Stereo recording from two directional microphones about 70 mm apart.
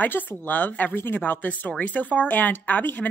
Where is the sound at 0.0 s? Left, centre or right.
Left.